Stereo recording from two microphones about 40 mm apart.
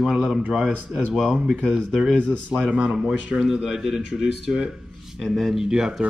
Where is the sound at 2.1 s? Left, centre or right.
Right.